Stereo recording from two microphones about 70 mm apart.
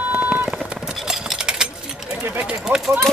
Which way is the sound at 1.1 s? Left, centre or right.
Centre.